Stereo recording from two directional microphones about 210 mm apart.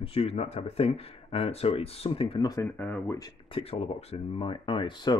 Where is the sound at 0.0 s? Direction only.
25° left (ahead or behind); by 3.3 s 10° left (ahead or behind).